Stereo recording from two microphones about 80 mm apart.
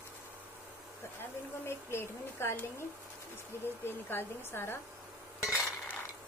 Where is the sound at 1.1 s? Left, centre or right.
Left.